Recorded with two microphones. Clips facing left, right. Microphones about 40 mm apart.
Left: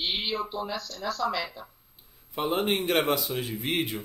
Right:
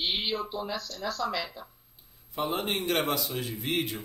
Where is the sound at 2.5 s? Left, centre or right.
Centre.